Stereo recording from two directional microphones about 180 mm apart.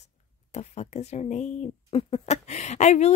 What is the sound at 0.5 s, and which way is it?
Speech, 35° left (ahead or behind).